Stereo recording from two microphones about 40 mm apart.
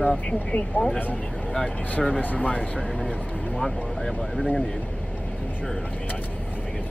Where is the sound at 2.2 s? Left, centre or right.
Left.